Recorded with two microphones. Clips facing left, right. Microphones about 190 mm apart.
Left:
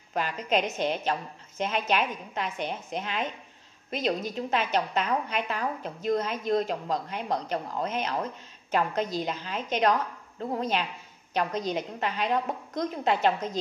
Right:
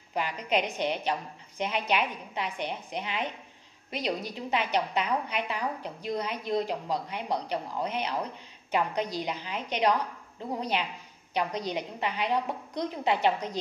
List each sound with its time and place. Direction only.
0.1 s a woman's voice: 15° right (ahead or behind)